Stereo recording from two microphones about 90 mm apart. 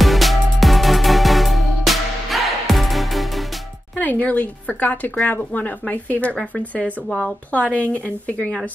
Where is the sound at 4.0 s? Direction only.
15° left (ahead or behind).